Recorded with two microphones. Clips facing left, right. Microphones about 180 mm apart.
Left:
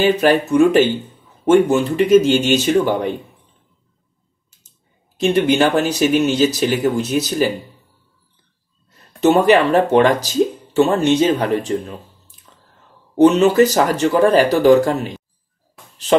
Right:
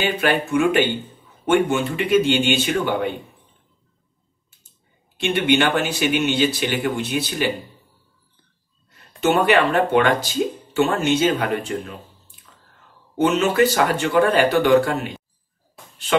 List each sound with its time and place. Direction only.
0.1 s speech: 40° left (ahead or behind)
5.1 s speech: 35° left (ahead or behind)
9.3 s speech: 40° left (ahead or behind)
13.2 s speech: 35° left (ahead or behind)